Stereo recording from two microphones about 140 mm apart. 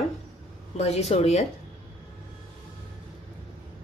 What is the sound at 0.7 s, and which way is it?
Speech, 50° left (ahead or behind).